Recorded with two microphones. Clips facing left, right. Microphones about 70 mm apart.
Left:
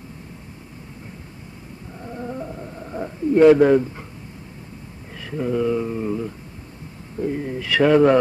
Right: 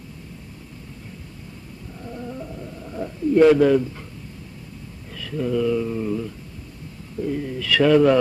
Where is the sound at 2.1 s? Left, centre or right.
Left.